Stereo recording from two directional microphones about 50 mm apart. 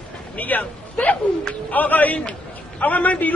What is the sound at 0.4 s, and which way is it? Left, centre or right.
A man's voice, left.